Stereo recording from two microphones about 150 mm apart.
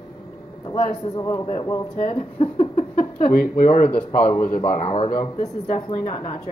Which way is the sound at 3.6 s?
45° left (ahead or behind).